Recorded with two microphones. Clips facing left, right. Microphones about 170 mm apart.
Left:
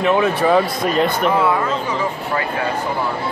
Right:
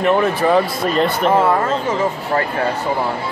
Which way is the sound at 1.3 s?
45° right (ahead or behind).